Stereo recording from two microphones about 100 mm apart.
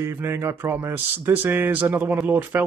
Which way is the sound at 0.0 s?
25° right (ahead or behind).